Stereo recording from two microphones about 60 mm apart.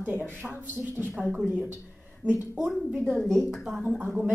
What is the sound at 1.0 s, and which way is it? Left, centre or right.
Speech, left.